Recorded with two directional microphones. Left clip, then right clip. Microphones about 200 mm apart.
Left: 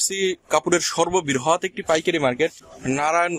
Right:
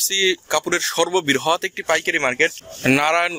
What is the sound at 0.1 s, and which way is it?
Speech, 10° left (ahead or behind).